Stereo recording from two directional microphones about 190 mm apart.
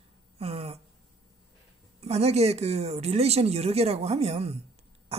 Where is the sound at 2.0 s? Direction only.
35° right (ahead or behind).